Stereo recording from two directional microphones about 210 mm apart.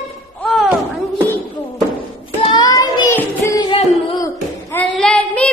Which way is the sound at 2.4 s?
20° left (ahead or behind).